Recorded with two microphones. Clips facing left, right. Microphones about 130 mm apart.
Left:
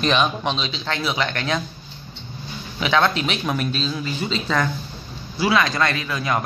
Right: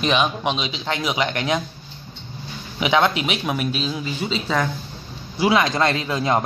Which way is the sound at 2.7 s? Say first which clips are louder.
Right 1 dB; 15° right (ahead or behind).